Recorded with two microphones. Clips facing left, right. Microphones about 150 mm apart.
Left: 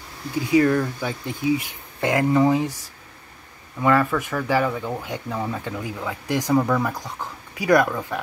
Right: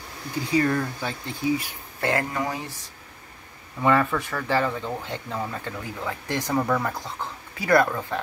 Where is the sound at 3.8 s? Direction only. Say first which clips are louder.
Left 2 dB; centre (ahead or behind).